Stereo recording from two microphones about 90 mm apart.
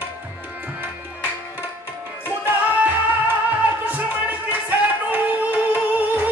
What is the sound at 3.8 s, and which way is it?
Music, 15° right (ahead or behind).